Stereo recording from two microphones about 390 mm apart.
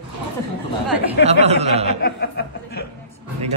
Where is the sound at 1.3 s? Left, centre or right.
Centre.